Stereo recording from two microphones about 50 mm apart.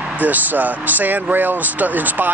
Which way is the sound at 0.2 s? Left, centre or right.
Right.